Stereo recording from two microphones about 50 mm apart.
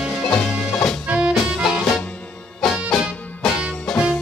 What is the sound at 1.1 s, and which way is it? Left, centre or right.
Music, right.